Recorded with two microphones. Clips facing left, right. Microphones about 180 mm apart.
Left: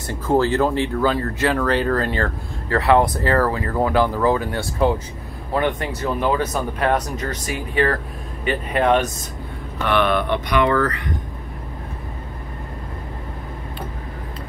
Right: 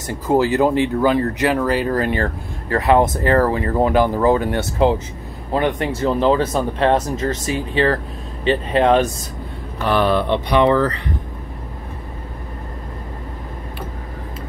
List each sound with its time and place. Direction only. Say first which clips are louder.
0.1 s speech: right 2 dB; 15° right (ahead or behind)